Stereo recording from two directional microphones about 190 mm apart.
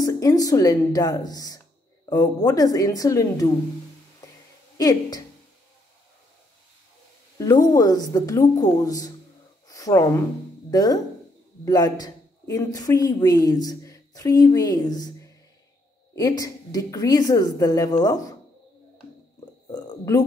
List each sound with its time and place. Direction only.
0.0 s a woman's voice: 20° left (ahead or behind)
4.7 s a woman's voice: 20° left (ahead or behind)
7.3 s a woman's voice: 20° left (ahead or behind)
9.7 s a sound: 20° left (ahead or behind)
10.7 s a woman's voice: 20° left (ahead or behind)
19.7 s a sound: 20° left (ahead or behind)